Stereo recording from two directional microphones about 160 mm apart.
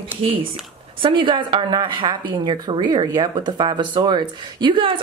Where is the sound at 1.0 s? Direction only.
30° right (ahead or behind).